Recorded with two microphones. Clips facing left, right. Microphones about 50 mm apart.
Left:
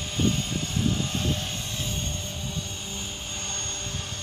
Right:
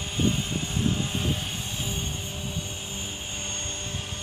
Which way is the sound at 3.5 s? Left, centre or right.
Right.